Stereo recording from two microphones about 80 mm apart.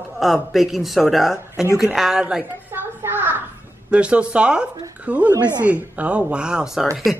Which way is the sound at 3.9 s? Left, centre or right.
Centre.